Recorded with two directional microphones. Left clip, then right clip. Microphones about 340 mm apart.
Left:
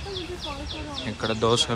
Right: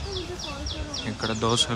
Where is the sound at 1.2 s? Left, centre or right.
Centre.